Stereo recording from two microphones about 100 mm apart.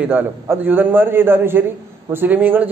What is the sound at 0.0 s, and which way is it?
A man's voice, 20° right (ahead or behind).